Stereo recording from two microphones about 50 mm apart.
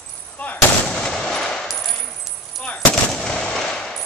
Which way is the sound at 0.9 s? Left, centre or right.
Centre.